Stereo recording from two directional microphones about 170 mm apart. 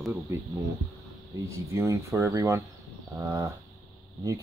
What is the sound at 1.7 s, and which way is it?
Speech, 20° right (ahead or behind).